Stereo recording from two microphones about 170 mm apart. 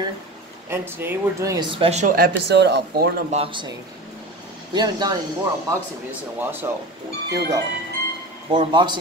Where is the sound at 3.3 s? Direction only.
35° right (ahead or behind).